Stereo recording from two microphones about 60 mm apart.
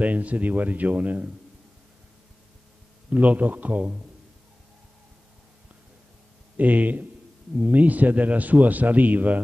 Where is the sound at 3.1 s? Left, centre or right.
Right.